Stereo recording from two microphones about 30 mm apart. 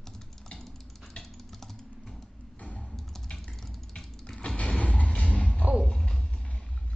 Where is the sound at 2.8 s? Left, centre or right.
Centre.